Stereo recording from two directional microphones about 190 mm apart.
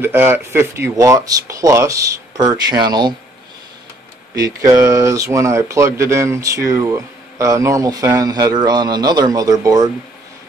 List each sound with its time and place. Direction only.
0.0 s speech: 10° right (ahead or behind)
4.4 s speech: 15° right (ahead or behind)